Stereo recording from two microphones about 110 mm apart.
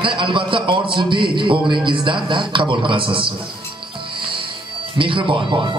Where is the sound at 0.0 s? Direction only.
50° right (ahead or behind).